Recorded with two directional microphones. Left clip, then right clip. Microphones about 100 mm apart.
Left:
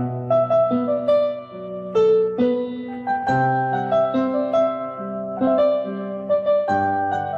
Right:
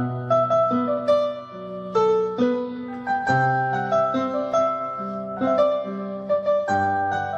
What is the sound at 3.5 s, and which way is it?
Music, 20° left (ahead or behind).